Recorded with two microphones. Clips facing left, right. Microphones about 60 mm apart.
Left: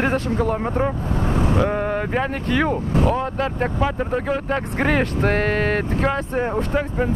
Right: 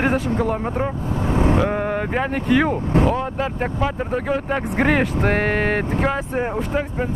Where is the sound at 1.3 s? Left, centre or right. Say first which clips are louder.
Right 3 dB; right.